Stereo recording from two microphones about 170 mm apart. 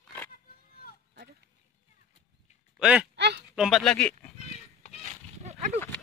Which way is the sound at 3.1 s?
90° right.